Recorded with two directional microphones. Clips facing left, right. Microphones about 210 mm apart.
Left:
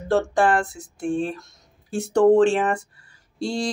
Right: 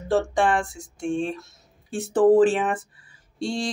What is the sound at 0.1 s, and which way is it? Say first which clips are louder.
Speech: left 2 dB; centre (ahead or behind).